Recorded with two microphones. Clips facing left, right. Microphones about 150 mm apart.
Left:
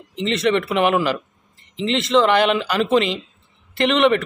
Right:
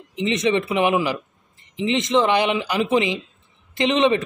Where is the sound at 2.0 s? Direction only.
15° right (ahead or behind).